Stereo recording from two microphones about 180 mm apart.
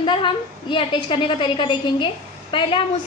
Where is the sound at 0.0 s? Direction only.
25° left (ahead or behind).